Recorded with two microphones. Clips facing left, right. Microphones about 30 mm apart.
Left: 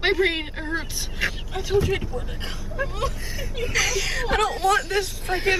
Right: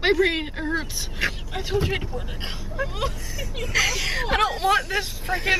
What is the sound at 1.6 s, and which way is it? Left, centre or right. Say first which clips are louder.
Speech: left 3 dB; right.